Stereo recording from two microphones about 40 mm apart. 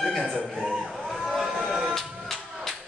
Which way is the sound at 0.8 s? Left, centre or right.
Centre.